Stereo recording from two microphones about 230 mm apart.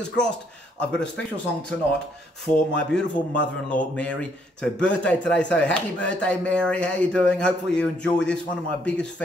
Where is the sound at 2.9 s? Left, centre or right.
Centre.